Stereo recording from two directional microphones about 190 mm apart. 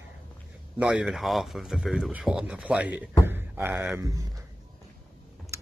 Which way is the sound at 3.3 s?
10° right (ahead or behind).